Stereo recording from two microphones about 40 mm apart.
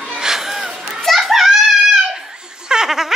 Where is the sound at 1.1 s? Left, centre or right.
Centre.